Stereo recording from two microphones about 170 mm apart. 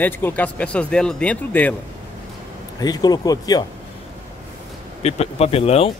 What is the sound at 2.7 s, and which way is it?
Speech, 20° left (ahead or behind).